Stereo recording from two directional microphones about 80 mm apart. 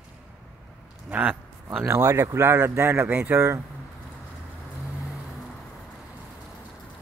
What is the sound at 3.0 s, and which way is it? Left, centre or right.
Speech, centre.